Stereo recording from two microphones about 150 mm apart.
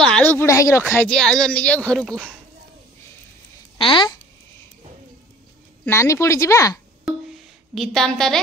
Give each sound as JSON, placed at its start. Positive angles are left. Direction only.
{"t": 0.0, "sound": "speech", "side_deg": 5}
{"t": 1.0, "sound": "speech", "side_deg": 5}
{"t": 3.7, "sound": "speech", "side_deg": 35}
{"t": 5.9, "sound": "speech", "side_deg": 20}
{"t": 7.1, "sound": "music", "side_deg": 0}